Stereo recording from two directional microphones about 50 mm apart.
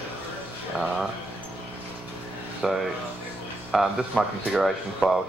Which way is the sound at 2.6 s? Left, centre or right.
Centre.